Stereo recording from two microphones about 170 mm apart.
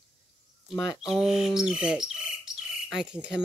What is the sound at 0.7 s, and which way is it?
A woman's voice, 5° right (ahead or behind).